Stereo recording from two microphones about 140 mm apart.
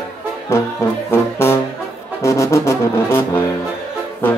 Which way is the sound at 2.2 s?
20° left (ahead or behind).